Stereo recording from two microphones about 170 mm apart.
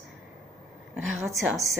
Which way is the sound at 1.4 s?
Centre (ahead or behind).